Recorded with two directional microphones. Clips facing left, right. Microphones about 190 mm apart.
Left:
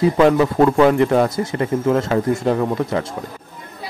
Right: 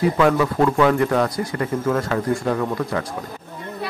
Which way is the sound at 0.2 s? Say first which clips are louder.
Left 4 dB; 30° left (ahead or behind).